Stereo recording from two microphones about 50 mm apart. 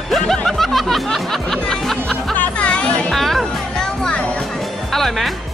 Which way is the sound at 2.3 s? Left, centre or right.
Left.